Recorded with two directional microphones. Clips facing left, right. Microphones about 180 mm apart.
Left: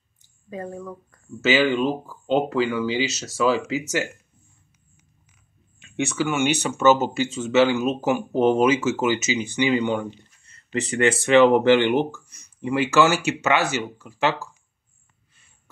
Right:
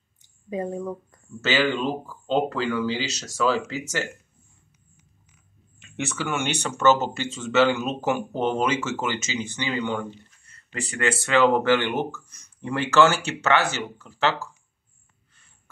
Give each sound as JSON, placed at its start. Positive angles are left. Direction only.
{"t": 0.2, "sound": "a sound", "side_deg": -20}
{"t": 2.5, "sound": "speech", "side_deg": 10}
{"t": 5.9, "sound": "speech", "side_deg": 0}